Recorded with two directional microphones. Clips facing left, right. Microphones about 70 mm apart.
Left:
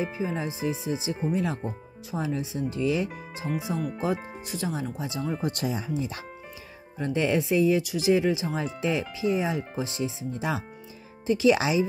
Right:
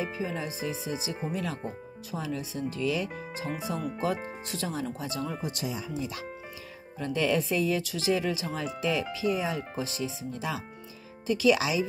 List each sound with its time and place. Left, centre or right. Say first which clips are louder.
0.0 s speech: left 3 dB; left
5.4 s speech: left 5 dB; left